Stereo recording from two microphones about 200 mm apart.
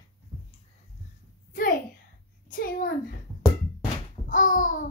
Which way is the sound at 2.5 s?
45° left (ahead or behind).